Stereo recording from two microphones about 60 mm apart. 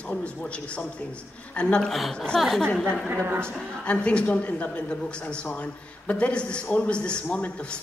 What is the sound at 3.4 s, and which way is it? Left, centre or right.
A man's voice, centre.